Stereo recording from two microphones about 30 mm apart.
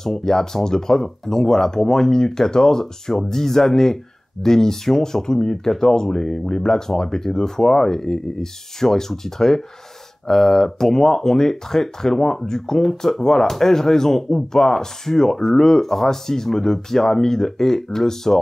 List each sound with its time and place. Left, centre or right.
0.0 s speech: centre